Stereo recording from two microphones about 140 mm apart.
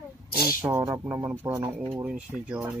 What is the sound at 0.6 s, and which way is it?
Speech, 20° right (ahead or behind).